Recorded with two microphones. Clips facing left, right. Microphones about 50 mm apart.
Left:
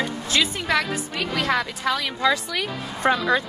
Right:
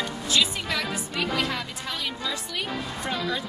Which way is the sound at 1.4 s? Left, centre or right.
Left.